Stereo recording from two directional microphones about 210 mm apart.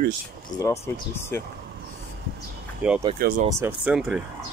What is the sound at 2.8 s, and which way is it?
Speech, 5° right (ahead or behind).